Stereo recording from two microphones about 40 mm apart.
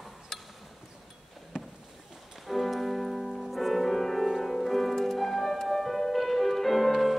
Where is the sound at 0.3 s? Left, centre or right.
Centre.